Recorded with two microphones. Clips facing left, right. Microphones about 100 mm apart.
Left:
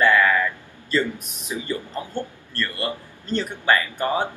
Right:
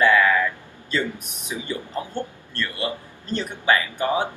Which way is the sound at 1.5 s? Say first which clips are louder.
Left 1 dB; 20° right (ahead or behind).